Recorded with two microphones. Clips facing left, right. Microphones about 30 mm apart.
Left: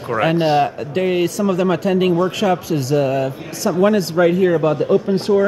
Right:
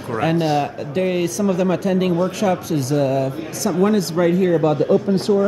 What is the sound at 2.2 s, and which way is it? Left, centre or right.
Speech, left.